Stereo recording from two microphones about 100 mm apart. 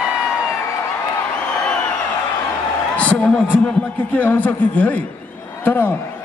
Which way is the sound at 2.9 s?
15° left (ahead or behind).